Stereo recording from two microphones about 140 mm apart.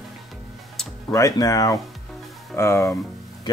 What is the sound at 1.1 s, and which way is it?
Speech, 25° left (ahead or behind).